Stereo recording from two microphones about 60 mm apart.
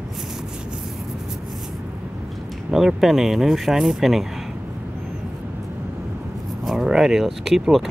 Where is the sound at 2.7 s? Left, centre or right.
Centre.